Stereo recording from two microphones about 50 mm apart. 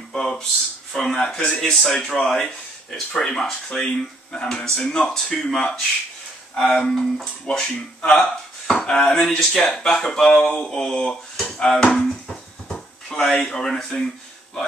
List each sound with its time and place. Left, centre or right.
0.1 s speech: centre
7.4 s speech: centre